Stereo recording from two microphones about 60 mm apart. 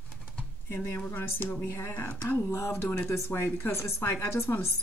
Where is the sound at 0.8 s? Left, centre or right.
Left.